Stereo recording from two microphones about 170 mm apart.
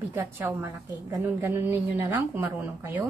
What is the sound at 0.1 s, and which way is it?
A woman's voice, 15° right (ahead or behind).